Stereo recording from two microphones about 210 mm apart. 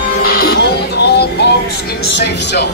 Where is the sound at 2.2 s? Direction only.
55° left (ahead or behind).